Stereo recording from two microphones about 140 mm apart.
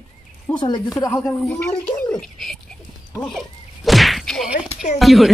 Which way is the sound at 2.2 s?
5° left (ahead or behind).